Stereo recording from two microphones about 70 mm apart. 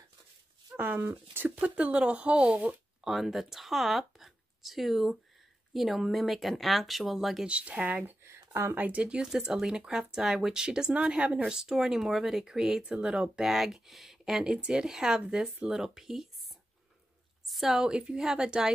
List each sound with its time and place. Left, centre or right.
0.7 s speech: right
3.0 s speech: centre
7.4 s speech: centre; by 8.7 s right
8.7 s speech: centre
17.5 s speech: centre